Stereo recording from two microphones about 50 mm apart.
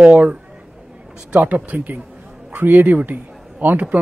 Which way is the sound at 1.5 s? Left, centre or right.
Right.